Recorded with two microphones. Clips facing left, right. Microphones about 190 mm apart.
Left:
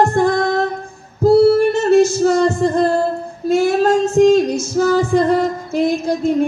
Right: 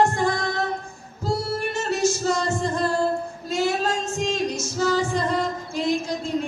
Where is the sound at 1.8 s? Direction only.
55° left (ahead or behind).